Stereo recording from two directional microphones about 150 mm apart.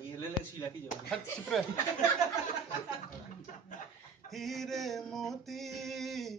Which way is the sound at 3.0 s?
60° left (ahead or behind).